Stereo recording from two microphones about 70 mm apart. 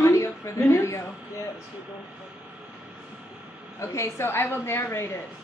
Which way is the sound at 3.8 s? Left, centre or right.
Left.